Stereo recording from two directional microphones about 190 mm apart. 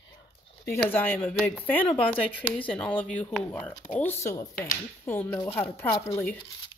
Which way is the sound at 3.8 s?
40° left (ahead or behind).